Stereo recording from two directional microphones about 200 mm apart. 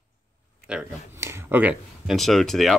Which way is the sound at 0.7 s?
10° right (ahead or behind).